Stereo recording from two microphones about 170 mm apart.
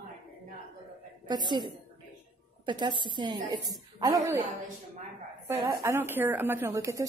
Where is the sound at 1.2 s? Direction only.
25° right (ahead or behind).